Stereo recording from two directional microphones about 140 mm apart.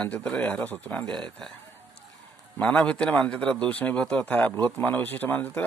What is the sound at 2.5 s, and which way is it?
A man's voice, 10° left (ahead or behind).